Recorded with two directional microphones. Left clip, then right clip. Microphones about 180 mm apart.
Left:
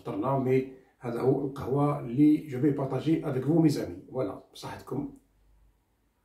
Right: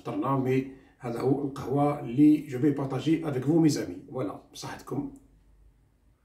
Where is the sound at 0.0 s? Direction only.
15° right (ahead or behind).